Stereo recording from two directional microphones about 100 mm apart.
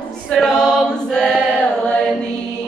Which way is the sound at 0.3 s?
10° left (ahead or behind).